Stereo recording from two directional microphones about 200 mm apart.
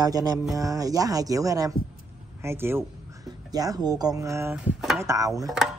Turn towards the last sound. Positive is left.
turn(degrees=-15)  # may be behind; listen again after turning